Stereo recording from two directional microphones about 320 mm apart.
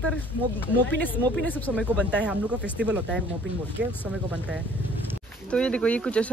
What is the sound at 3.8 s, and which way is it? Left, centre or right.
Speech, right.